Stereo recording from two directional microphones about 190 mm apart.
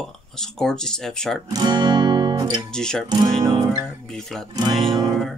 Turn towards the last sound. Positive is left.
turn(degrees=0)  # may be behind; listen again after turning